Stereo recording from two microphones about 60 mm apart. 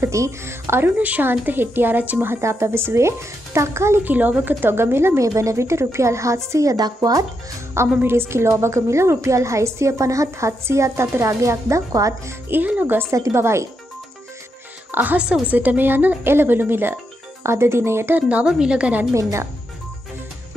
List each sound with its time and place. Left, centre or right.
0.1 s a woman's voice: right
0.9 s a woman's voice: right
2.4 s a woman's voice: right
4.0 s a woman's voice: right
5.2 s a woman's voice: right
8.0 s a woman's voice: right
12.4 s a woman's voice: right
13.1 s a woman's voice: right
14.9 s speech: right
15.1 s speech: centre
15.5 s a woman's voice: right
17.4 s a woman's voice: right
18.4 s speech: centre